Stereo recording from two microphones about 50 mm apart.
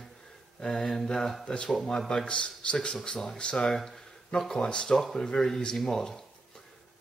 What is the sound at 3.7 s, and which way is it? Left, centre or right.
Speech, centre.